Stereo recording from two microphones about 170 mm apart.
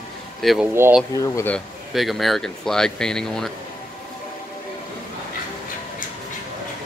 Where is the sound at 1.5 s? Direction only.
Centre (ahead or behind).